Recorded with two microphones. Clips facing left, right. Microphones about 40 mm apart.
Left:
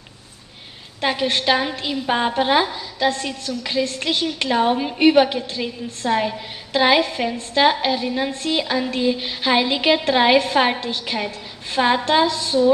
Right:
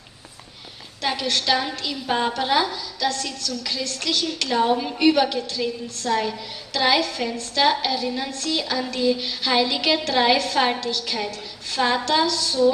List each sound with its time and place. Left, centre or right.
1.0 s a woman's voice: left